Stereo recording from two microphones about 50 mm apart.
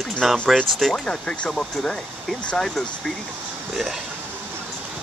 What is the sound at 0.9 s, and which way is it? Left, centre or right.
Speech, centre.